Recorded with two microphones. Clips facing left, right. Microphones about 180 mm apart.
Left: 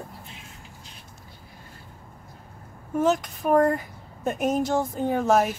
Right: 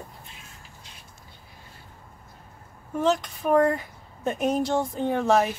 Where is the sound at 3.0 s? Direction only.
5° left (ahead or behind).